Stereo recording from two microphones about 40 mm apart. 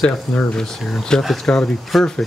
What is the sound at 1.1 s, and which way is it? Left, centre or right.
Speech, centre.